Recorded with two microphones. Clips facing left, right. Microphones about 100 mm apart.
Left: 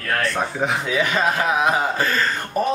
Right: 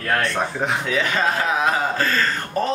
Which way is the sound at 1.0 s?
15° left (ahead or behind).